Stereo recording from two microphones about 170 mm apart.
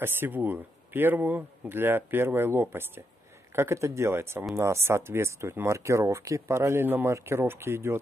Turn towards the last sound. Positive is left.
turn(degrees=-15)  # may be behind; listen again after turning